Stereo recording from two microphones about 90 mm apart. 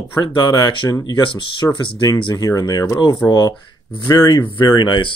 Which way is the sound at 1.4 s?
65° left (ahead or behind).